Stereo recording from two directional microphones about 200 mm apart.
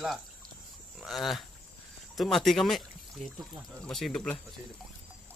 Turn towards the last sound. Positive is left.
turn(degrees=0)  # may be behind; listen again after turning